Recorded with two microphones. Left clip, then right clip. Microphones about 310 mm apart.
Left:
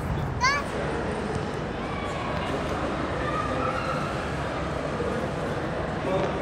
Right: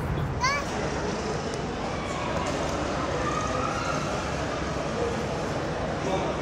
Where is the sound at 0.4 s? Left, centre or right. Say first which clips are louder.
Left 3 dB; centre.